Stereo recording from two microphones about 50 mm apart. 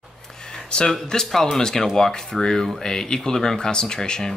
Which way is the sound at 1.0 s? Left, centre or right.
Centre.